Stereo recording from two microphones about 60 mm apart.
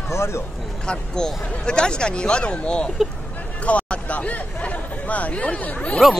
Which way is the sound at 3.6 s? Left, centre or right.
Left.